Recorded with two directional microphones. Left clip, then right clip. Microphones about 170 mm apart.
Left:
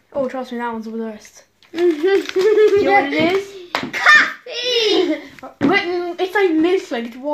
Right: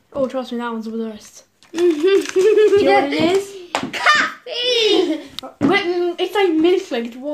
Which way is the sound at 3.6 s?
10° right (ahead or behind).